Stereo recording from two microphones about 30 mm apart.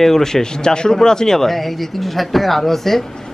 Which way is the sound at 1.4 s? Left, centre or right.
Centre.